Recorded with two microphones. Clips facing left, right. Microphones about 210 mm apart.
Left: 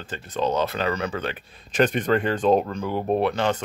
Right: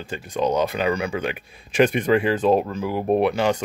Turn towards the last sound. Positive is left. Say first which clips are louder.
# right 3 dB
turn(degrees=-10)  # may be behind; listen again after turning